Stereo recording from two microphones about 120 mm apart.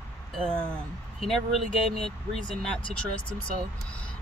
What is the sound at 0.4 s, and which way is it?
Speech, 5° left (ahead or behind).